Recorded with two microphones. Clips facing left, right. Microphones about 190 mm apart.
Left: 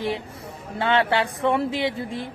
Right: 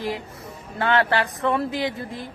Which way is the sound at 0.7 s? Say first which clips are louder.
Even; 20° left (ahead or behind).